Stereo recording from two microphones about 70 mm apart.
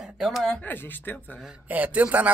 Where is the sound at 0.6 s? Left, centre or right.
Left.